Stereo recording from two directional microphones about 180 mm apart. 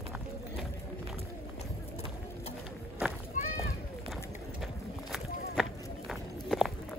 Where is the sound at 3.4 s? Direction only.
45° left (ahead or behind).